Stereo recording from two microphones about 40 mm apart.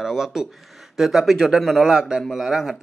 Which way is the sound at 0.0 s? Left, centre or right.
Centre.